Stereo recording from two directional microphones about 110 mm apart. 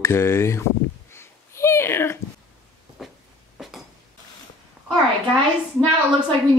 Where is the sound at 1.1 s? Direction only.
25° left (ahead or behind).